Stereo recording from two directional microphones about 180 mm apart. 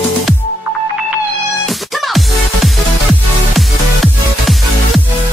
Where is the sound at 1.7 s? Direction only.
Centre (ahead or behind).